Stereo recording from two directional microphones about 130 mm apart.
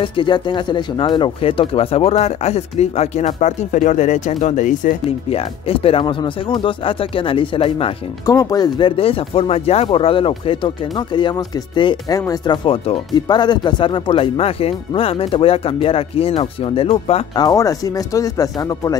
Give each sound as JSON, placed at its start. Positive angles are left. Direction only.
{"t": 0.0, "sound": "speech", "side_deg": 40}
{"t": 5.3, "sound": "speech", "side_deg": 45}
{"t": 8.3, "sound": "speech", "side_deg": 25}
{"t": 12.6, "sound": "speech", "side_deg": 45}
{"t": 17.4, "sound": "speech", "side_deg": 30}